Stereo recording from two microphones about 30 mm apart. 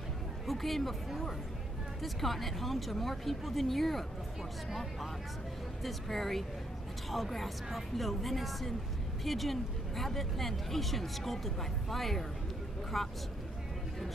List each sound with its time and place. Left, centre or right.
0.5 s speech: centre
5.9 s speech: centre